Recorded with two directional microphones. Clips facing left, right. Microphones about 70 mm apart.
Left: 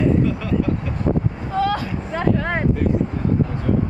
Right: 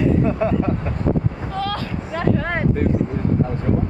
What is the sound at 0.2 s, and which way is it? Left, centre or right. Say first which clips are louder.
Speech: right 2 dB; right.